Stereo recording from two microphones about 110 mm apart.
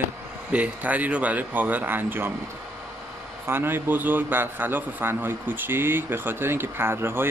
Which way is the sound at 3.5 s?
20° right (ahead or behind).